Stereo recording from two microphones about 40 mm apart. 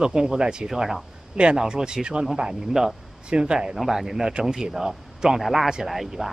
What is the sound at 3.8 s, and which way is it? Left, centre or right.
Speech, centre.